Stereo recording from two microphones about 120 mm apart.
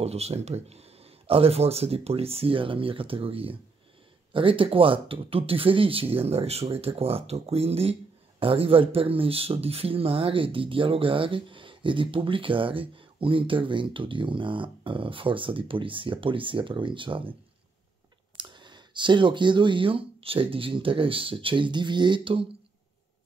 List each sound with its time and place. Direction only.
0.0 s speech: 60° right (ahead or behind); by 17.2 s 45° right (ahead or behind)
18.4 s speech: 40° right (ahead or behind)